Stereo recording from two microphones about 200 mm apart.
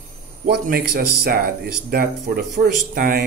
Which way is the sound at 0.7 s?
50° right (ahead or behind).